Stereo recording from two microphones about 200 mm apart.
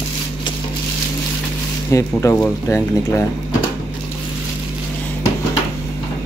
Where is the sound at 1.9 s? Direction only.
10° left (ahead or behind).